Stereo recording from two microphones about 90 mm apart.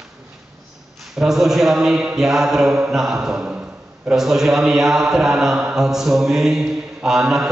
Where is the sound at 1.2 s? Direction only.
5° right (ahead or behind).